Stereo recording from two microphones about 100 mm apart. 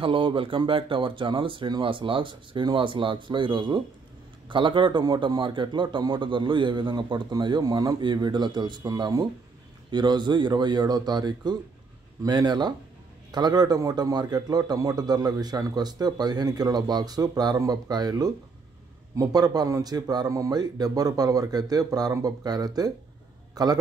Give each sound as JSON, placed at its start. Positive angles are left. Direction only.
{"t": 0.0, "sound": "a man's voice", "side_deg": -60}